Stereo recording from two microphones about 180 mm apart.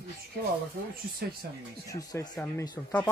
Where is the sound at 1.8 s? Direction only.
20° left (ahead or behind).